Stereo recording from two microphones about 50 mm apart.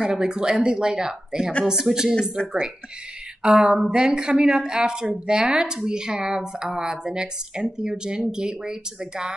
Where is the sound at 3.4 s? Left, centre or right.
Centre.